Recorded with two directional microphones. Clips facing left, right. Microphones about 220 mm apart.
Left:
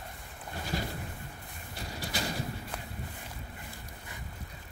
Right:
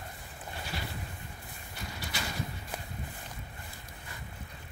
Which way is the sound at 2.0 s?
35° left (ahead or behind).